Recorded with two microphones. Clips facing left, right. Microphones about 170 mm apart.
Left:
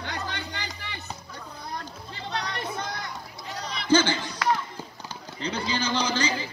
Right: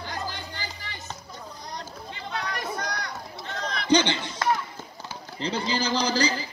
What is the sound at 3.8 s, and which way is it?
Speech, 20° right (ahead or behind).